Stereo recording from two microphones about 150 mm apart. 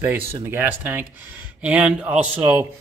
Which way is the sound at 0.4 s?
15° right (ahead or behind).